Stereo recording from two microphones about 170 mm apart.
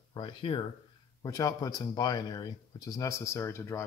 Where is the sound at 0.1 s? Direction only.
30° left (ahead or behind).